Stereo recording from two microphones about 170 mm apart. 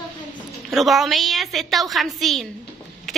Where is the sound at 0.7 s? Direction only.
Centre (ahead or behind).